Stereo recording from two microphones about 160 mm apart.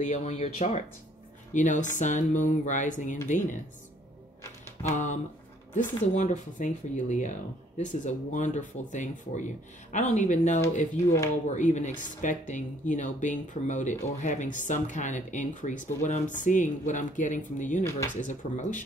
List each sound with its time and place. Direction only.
0.0 s speech: 45° left (ahead or behind)
4.8 s speech: 50° left (ahead or behind)